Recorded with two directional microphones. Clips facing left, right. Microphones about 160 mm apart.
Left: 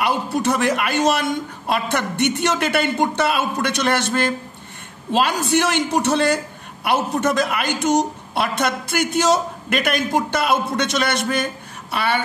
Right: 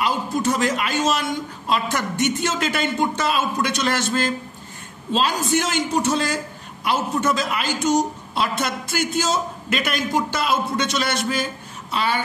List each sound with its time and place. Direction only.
0.0 s a man's voice: 65° left (ahead or behind)